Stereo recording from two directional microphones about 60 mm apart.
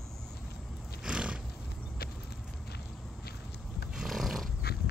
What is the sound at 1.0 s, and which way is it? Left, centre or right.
Roar, centre.